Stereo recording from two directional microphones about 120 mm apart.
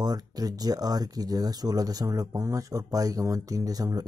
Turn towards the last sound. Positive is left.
turn(degrees=-30)  # may be behind; listen again after turning